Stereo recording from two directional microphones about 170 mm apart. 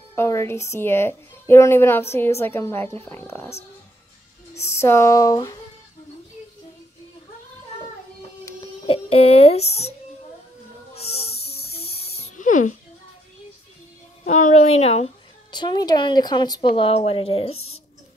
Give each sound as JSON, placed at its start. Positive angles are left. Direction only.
{"t": 0.1, "sound": "a woman's voice", "side_deg": 15}
{"t": 4.6, "sound": "a woman's voice", "side_deg": 15}
{"t": 8.8, "sound": "speech", "side_deg": 35}
{"t": 11.0, "sound": "a sound", "side_deg": 35}
{"t": 12.4, "sound": "speech", "side_deg": 50}
{"t": 14.2, "sound": "a woman's voice", "side_deg": 45}
{"t": 15.5, "sound": "a woman's voice", "side_deg": 25}